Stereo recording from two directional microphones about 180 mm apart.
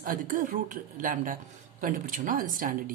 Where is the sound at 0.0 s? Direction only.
50° right (ahead or behind).